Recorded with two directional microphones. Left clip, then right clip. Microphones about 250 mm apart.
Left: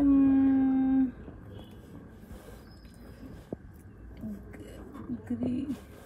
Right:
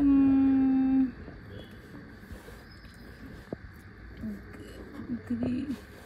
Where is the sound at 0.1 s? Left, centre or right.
Right.